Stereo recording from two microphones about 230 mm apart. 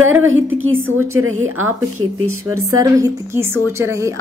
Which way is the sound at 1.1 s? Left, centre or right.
Right.